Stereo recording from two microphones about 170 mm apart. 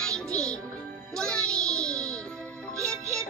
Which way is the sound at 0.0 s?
5° left (ahead or behind).